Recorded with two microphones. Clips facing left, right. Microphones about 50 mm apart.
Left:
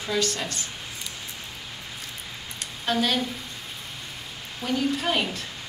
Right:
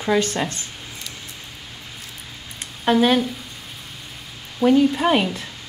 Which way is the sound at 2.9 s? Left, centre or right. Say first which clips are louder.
Right 8 dB; right.